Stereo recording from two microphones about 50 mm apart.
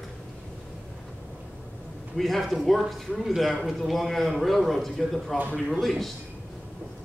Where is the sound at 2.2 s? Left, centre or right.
Centre.